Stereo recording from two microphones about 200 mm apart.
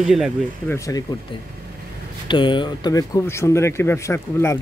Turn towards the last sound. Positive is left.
turn(degrees=15)  # may be behind; listen again after turning